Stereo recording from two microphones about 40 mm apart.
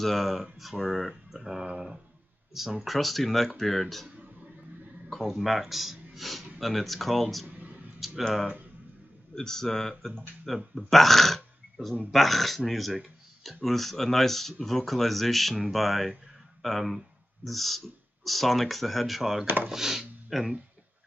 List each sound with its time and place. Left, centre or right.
0.0 s speech: centre
2.8 s speech: centre
5.1 s speech: centre
7.4 s a sound: right
8.2 s speech: centre
19.7 s a sound: centre